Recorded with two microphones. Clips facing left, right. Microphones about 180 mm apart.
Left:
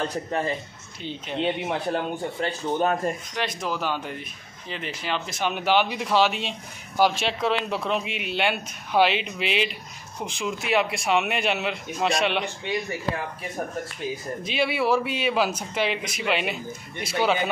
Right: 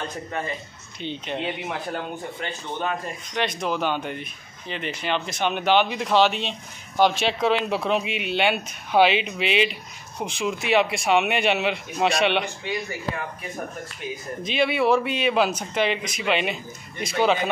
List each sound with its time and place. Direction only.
0.1 s speech: 35° left (ahead or behind)
1.0 s speech: 5° left (ahead or behind)
1.4 s speech: 30° left (ahead or behind)
2.4 s speech: 40° left (ahead or behind)
3.3 s speech: 5° left (ahead or behind)
14.4 s speech: 5° left (ahead or behind)